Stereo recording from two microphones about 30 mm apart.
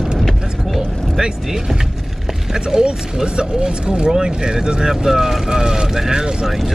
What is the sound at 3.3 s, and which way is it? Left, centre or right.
Speech, right.